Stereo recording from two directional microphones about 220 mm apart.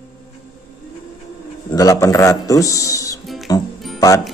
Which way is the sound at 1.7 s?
15° left (ahead or behind).